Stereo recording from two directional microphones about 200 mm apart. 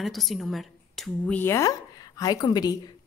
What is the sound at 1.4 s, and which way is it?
A woman's voice, 15° left (ahead or behind).